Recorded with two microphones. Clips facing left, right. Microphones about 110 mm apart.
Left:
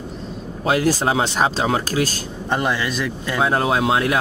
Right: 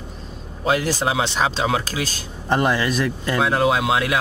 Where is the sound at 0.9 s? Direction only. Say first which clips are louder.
Left 3 dB; 40° left (ahead or behind).